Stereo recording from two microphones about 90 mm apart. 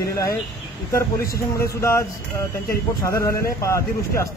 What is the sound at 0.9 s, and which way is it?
A man's voice, 35° left (ahead or behind).